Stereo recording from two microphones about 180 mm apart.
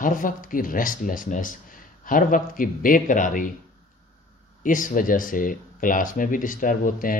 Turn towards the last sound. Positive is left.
turn(degrees=50)  # may be behind; listen again after turning